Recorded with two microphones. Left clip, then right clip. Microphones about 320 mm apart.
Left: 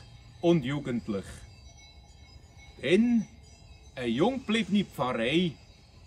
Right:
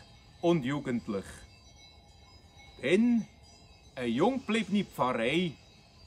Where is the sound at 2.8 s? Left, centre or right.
Centre.